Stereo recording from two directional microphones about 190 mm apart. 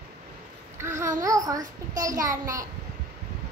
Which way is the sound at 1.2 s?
20° right (ahead or behind).